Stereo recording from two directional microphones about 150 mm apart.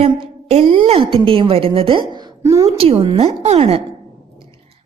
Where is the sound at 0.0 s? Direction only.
40° right (ahead or behind); by 2.8 s 20° right (ahead or behind).